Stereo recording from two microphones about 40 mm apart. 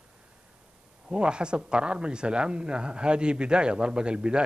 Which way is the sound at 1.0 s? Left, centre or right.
Right.